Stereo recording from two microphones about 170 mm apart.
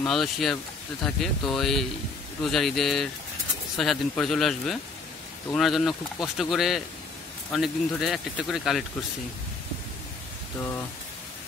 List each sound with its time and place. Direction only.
0.0 s speech: centre (ahead or behind)